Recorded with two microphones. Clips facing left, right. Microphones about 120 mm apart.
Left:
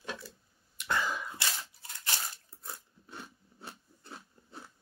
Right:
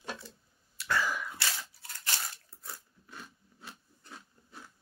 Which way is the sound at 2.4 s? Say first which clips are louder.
Left 1 dB; 25° left (ahead or behind).